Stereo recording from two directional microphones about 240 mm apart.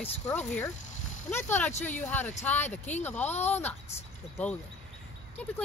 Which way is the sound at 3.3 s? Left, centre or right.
Left.